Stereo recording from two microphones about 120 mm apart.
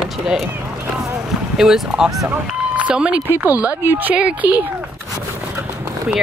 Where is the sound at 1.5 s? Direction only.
5° right (ahead or behind).